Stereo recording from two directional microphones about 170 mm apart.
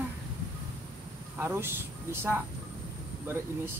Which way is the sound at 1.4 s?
15° right (ahead or behind).